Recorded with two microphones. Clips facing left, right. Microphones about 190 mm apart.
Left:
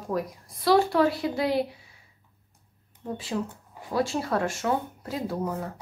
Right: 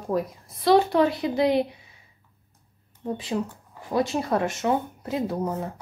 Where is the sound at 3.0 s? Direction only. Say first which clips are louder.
Right 3 dB; 20° right (ahead or behind).